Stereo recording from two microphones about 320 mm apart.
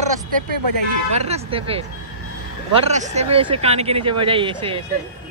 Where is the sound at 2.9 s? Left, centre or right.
Right.